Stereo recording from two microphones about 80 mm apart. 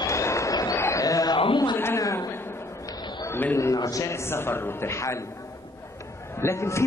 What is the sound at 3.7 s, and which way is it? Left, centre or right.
A man's voice, left.